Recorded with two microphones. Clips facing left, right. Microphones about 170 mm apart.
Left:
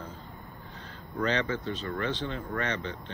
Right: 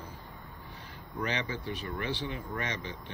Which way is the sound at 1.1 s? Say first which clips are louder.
Left 5 dB; 10° right (ahead or behind).